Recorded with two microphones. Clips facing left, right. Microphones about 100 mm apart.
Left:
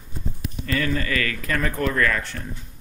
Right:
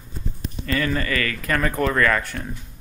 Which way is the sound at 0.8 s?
55° right (ahead or behind).